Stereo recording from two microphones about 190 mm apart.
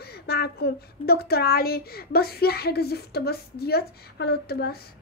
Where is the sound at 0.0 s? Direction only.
55° left (ahead or behind).